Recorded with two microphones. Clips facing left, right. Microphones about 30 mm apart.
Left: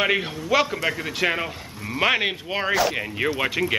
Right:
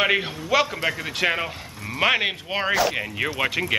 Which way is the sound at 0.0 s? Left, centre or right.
Centre.